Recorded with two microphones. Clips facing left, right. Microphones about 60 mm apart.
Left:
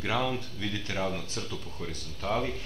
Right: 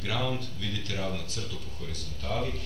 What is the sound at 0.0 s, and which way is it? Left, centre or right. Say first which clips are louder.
Speech: left 2 dB; left.